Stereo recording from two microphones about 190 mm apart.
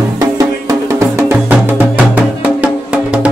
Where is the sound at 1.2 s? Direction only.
10° right (ahead or behind).